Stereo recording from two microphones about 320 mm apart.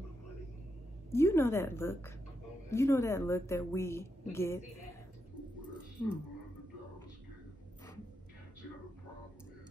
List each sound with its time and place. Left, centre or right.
1.1 s a woman's voice: centre